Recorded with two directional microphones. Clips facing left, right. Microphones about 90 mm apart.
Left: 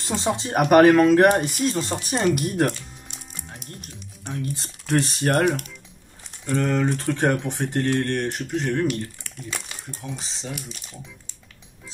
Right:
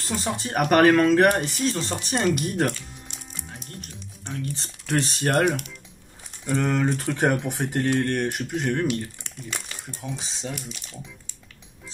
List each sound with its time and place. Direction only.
0.0 s speech: 20° left (ahead or behind); by 8.8 s 5° right (ahead or behind)
10.2 s speech: centre (ahead or behind)